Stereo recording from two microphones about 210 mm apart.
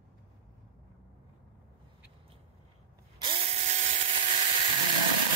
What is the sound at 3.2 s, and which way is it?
Tools, 25° right (ahead or behind).